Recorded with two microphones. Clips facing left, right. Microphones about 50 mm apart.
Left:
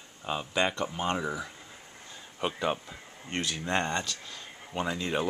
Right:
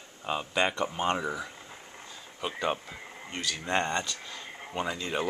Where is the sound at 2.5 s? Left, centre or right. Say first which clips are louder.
Right 1 dB; centre.